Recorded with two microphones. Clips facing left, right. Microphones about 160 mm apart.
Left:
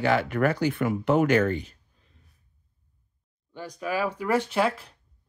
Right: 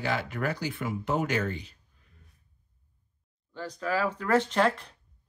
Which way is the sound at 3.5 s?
15° left (ahead or behind).